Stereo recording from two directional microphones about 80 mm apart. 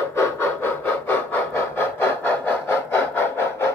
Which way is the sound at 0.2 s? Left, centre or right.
Left.